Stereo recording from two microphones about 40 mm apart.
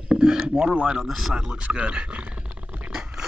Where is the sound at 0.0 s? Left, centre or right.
Right.